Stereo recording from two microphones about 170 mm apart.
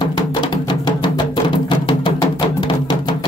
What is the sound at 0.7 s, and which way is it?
Music, 25° left (ahead or behind).